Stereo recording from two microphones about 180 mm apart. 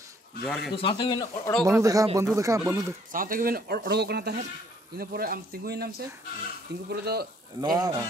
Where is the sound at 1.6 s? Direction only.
20° right (ahead or behind).